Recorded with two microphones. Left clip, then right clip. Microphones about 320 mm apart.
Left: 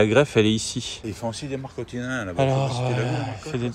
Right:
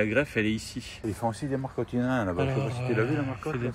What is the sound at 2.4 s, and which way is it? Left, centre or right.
Speech, centre.